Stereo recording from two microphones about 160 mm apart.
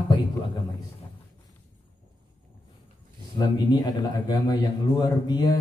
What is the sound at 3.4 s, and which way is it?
A man's voice, 25° left (ahead or behind).